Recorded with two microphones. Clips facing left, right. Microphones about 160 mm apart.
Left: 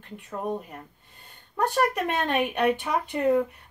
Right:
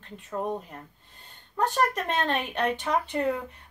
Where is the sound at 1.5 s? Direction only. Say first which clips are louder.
Left 2 dB; 15° left (ahead or behind).